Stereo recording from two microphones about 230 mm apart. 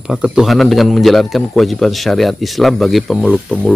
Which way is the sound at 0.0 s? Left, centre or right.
Centre.